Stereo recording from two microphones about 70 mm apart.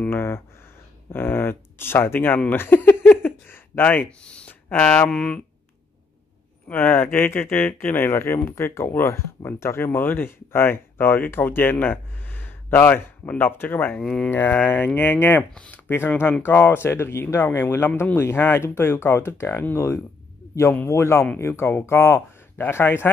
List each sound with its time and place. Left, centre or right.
0.1 s speech: left
2.5 s a sound: left
4.6 s speech: left
6.7 s speech: left
13.9 s speech: centre
14.3 s speech: left
15.5 s speech: centre
15.9 s speech: left